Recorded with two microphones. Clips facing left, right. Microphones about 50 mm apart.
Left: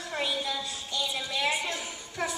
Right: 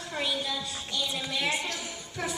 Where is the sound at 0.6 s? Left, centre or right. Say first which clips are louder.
Even; centre.